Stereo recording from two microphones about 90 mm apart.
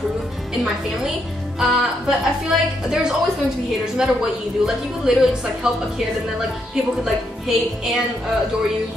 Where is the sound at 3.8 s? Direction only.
5° right (ahead or behind).